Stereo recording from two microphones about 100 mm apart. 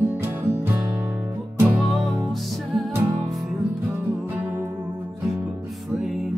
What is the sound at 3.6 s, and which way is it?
Music, 20° right (ahead or behind).